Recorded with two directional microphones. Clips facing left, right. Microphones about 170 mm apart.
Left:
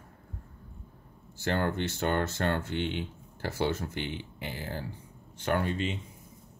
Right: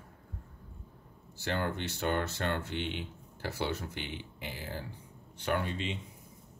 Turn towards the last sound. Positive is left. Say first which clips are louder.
# left 4 dB
turn(degrees=50)  # may be behind; listen again after turning